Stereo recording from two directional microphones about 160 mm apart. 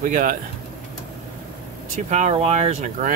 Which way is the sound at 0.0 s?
55° right (ahead or behind).